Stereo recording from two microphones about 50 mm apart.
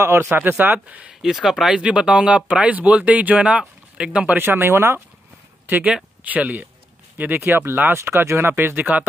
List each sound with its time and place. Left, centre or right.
0.0 s speech: right
0.4 s speech: right
0.8 s speech: right
1.2 s speech: centre
1.8 s speech: right
4.4 s speech: right
6.2 s speech: right
7.2 s speech: right
8.0 s speech: right